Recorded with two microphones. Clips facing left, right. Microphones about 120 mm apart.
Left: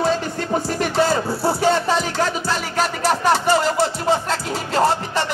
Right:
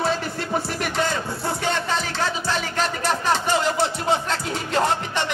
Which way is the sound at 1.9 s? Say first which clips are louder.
Left 5 dB; 10° left (ahead or behind).